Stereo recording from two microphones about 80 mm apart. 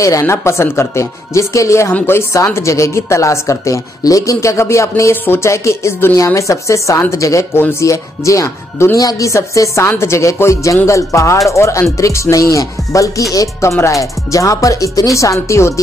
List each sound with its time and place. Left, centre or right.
0.0 s speech: left
5.1 s speech: left